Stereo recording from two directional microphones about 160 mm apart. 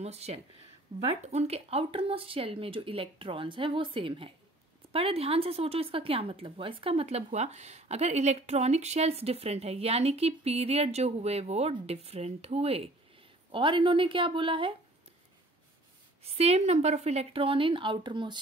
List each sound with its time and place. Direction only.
0.0 s speech: 40° right (ahead or behind)
16.3 s speech: 40° right (ahead or behind)